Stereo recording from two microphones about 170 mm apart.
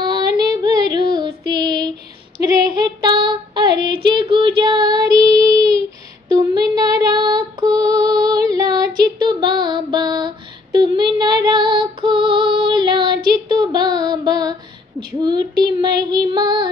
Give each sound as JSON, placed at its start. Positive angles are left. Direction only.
{"t": 0.0, "sound": "female singing", "side_deg": -25}
{"t": 15.2, "sound": "child singing", "side_deg": -25}